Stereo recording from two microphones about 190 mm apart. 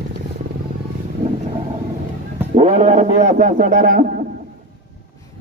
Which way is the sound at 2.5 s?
35° right (ahead or behind).